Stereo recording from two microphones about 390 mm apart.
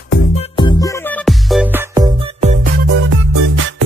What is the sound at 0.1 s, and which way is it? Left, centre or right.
Music, centre.